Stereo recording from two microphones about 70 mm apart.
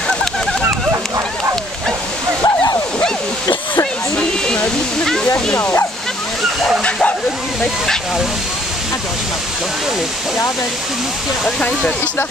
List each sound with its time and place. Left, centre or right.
2.4 s waterfall: left
5.3 s bow-wow: left
6.8 s dog: centre
11.6 s speech: left